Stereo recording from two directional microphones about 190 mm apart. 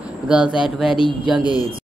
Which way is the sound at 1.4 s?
20° left (ahead or behind).